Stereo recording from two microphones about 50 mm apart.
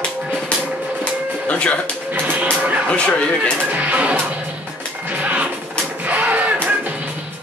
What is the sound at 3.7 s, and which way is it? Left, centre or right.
Speech, right.